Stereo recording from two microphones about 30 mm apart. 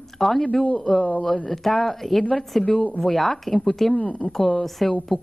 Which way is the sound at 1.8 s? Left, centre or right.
Centre.